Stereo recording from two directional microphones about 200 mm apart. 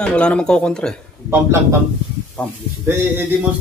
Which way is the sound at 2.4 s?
5° left (ahead or behind).